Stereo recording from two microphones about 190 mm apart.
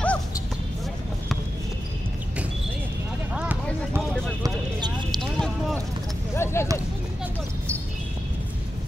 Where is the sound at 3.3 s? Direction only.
5° right (ahead or behind).